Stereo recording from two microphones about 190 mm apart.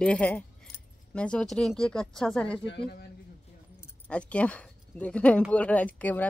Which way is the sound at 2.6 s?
60° left (ahead or behind).